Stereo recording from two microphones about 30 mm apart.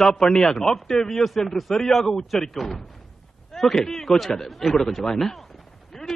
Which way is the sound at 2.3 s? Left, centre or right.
Centre.